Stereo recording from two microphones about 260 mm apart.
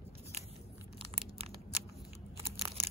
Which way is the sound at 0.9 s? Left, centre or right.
Right.